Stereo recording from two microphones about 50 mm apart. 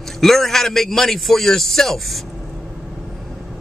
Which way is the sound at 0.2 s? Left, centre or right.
Centre.